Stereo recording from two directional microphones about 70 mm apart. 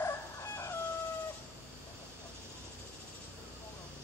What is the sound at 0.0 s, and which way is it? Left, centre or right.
Chicken, left.